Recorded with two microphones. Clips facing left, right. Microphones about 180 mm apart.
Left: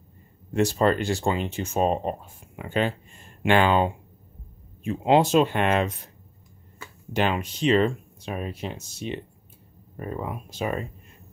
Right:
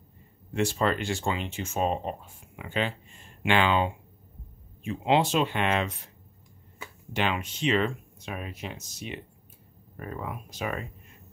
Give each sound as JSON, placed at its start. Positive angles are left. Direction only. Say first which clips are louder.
{"t": 0.5, "sound": "speech", "louder": "left 5 dB", "side_deg": 40}
{"t": 7.2, "sound": "speech", "louder": "left 4 dB", "side_deg": 40}